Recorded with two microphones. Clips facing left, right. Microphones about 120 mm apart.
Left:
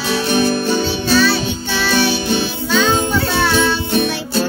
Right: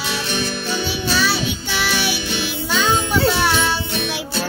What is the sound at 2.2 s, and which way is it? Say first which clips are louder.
Music: left 7 dB; 40° left (ahead or behind).